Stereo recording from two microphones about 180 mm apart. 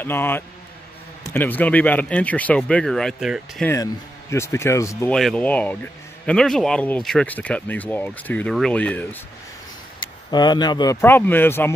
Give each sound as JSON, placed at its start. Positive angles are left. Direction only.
{"t": 0.0, "sound": "speech", "side_deg": 10}
{"t": 3.6, "sound": "speech", "side_deg": 15}
{"t": 5.1, "sound": "speech", "side_deg": 5}
{"t": 9.9, "sound": "speech", "side_deg": 25}